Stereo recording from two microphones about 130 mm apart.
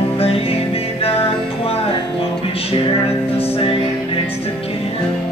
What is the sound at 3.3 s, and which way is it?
Music, 50° left (ahead or behind).